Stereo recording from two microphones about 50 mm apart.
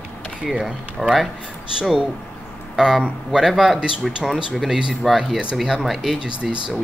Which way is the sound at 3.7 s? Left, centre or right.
Centre.